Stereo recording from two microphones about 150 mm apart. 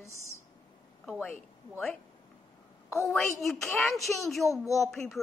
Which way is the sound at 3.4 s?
Centre (ahead or behind).